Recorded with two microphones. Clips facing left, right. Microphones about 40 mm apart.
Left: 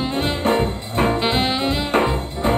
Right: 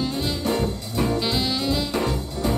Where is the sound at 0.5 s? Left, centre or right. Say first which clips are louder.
Left 6 dB; left.